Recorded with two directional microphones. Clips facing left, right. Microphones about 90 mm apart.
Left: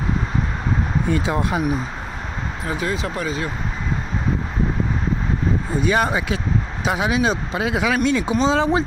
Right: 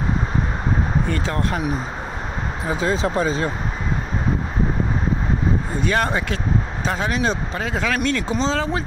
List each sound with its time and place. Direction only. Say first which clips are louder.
1.0 s speech: left 2 dB; 10° left (ahead or behind)
2.6 s speech: right 3 dB; 25° right (ahead or behind)
5.8 s speech: left 3 dB; 10° left (ahead or behind)